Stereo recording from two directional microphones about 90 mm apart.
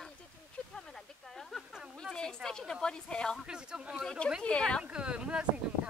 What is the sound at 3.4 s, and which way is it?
Speech, 10° right (ahead or behind).